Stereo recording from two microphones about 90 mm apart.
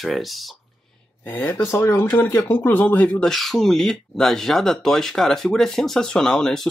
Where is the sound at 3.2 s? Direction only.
Centre (ahead or behind).